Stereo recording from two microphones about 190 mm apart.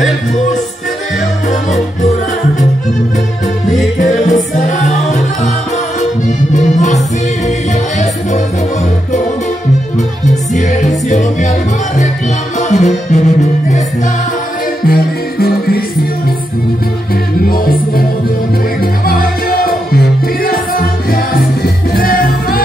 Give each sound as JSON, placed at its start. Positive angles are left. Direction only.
{"t": 3.6, "sound": "music", "side_deg": 40}
{"t": 9.9, "sound": "music", "side_deg": 40}
{"t": 12.5, "sound": "music", "side_deg": 40}
{"t": 14.9, "sound": "music", "side_deg": 50}
{"t": 17.5, "sound": "music", "side_deg": 50}